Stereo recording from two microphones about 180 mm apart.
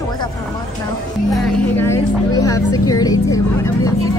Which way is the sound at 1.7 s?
15° left (ahead or behind).